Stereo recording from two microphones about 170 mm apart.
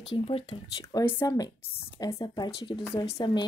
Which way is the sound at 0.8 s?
20° left (ahead or behind).